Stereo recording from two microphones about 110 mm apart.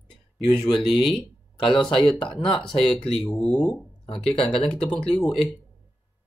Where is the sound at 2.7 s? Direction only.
60° left (ahead or behind).